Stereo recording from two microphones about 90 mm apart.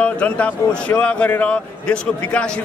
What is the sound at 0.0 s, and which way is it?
A man's voice, 15° left (ahead or behind).